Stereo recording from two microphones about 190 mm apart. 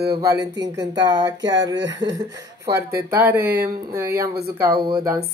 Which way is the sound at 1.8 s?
70° right (ahead or behind).